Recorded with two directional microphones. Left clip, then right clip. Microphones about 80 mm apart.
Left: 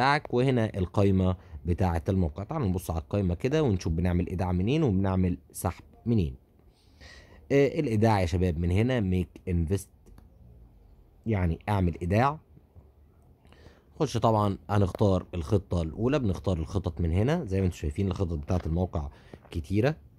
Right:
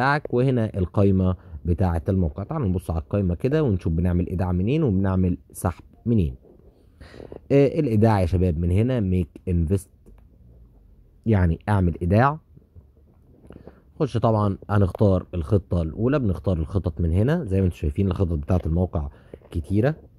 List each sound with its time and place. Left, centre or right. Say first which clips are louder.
0.0 s speech: right 3 dB; right
0.8 s speech: right 6 dB; centre
5.5 s speech: right 5 dB; right
11.2 s speech: right 7 dB; right
11.7 s speech: right 5 dB; right
13.5 s a sound: right 9 dB; centre
15.0 s speech: right 5 dB; right
17.0 s speech: right 4 dB; right
18.8 s speech: right 5 dB; right